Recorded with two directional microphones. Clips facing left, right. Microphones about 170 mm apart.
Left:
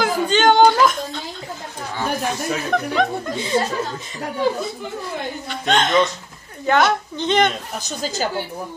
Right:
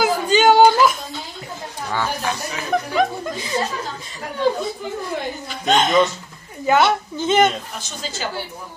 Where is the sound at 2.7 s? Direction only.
5° right (ahead or behind).